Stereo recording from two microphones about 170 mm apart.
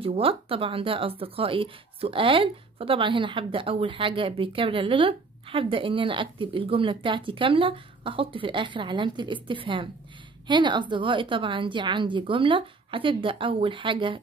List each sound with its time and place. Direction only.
0.0 s a woman's voice: 35° right (ahead or behind)